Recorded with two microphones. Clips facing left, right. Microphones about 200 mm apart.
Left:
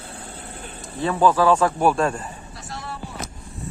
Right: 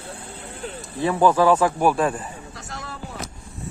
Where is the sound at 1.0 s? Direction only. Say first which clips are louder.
Right 1 dB; 15° right (ahead or behind).